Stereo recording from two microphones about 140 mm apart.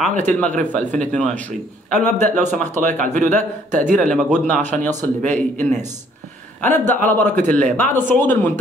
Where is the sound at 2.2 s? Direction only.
65° right (ahead or behind).